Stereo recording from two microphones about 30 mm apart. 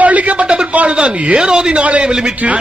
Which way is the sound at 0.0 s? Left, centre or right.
Right.